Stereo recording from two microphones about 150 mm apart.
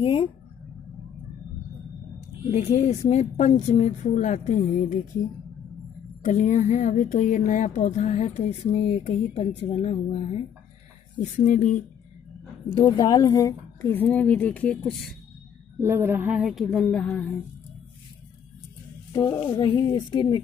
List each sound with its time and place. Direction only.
0.0 s speech: 35° left (ahead or behind)
2.5 s speech: 45° left (ahead or behind); by 5.0 s 60° left (ahead or behind)
6.2 s speech: 55° left (ahead or behind)
11.3 s speech: 55° left (ahead or behind)
12.7 s a woman's voice: 30° left (ahead or behind); by 15.1 s centre (ahead or behind)
15.8 s speech: 15° right (ahead or behind); by 16.8 s centre (ahead or behind)
16.9 s a woman's voice: 10° left (ahead or behind)
19.1 s speech: 25° left (ahead or behind)